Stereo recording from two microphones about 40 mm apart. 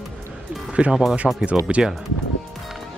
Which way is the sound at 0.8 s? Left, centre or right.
Right.